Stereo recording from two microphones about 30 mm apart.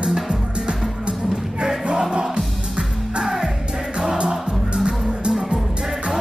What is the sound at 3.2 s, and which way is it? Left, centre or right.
Music, centre.